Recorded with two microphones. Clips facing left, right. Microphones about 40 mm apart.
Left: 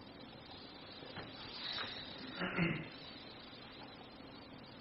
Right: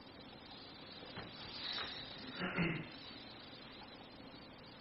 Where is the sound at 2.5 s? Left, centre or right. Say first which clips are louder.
Left 1 dB; left.